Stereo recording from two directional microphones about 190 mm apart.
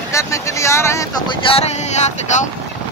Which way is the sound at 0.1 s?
15° left (ahead or behind).